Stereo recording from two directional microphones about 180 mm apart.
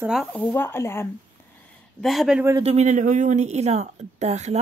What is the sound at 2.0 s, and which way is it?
Speech, centre (ahead or behind).